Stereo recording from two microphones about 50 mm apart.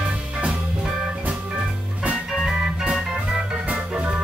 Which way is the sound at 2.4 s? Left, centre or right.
Centre.